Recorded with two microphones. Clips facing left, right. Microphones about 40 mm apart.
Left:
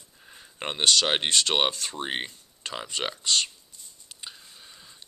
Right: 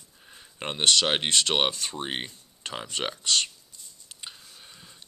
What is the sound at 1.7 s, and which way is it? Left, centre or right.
Speech, right.